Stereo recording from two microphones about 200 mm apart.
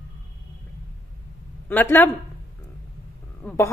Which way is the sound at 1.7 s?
10° left (ahead or behind).